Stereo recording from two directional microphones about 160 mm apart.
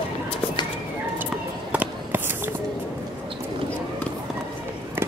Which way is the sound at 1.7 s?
10° right (ahead or behind).